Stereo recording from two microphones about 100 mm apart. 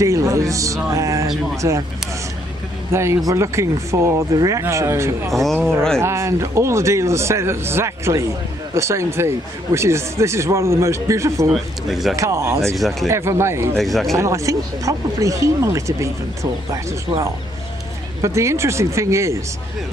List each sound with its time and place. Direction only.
0.0 s speech: 30° right (ahead or behind)
2.9 s a man's voice: 25° right (ahead or behind)
5.3 s speech: centre (ahead or behind)
5.9 s a man's voice: 30° right (ahead or behind)
11.5 s speech: centre (ahead or behind)
12.2 s a man's voice: 30° right (ahead or behind)
12.7 s speech: centre (ahead or behind)
13.1 s a man's voice: 25° right (ahead or behind)
13.7 s speech: centre (ahead or behind)
14.1 s speech: 30° right (ahead or behind)
18.2 s a man's voice: 30° right (ahead or behind)